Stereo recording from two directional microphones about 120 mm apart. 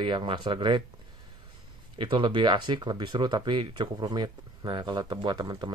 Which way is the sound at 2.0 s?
40° right (ahead or behind).